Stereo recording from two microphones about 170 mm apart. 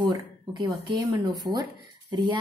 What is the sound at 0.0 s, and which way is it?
A woman's voice, 25° right (ahead or behind).